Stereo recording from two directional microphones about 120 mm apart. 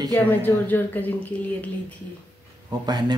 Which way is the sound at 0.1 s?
15° left (ahead or behind).